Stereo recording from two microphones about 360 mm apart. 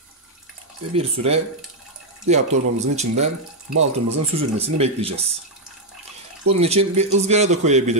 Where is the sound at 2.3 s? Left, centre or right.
Centre.